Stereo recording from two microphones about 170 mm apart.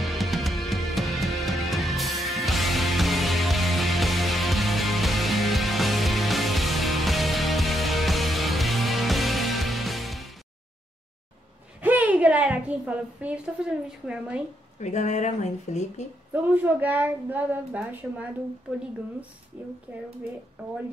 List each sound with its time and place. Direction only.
0.0 s music: centre (ahead or behind)
11.8 s a woman's voice: 10° right (ahead or behind)
14.8 s speech: 45° left (ahead or behind)
16.4 s a woman's voice: 10° right (ahead or behind)
19.5 s a woman's voice: 10° right (ahead or behind)